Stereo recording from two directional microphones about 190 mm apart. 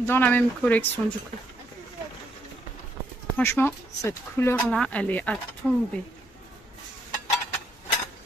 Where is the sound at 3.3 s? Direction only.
10° left (ahead or behind).